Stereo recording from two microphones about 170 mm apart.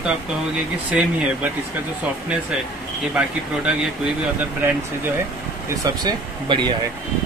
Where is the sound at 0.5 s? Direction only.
5° right (ahead or behind).